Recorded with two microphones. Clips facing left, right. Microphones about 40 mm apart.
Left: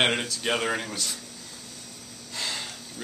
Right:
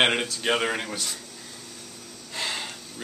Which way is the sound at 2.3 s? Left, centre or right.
Centre.